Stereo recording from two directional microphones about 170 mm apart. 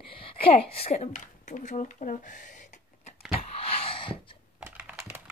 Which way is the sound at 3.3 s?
35° left (ahead or behind).